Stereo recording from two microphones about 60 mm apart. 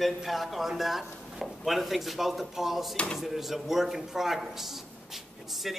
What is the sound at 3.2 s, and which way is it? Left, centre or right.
A man's voice, centre.